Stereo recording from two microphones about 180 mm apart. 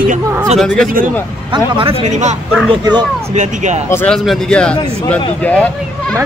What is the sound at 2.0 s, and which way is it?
Speech, 40° right (ahead or behind).